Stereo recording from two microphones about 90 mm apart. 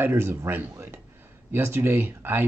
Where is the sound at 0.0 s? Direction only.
25° right (ahead or behind).